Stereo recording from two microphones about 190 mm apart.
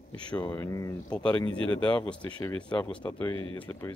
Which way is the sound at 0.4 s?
20° left (ahead or behind).